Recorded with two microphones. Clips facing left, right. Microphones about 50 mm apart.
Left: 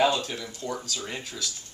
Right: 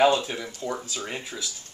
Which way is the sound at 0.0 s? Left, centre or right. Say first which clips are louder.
Right 3 dB; centre.